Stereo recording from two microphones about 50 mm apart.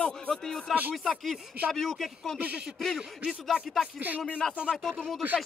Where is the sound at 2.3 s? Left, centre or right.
Right.